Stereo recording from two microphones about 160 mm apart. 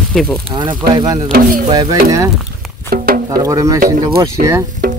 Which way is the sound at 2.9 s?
70° right (ahead or behind).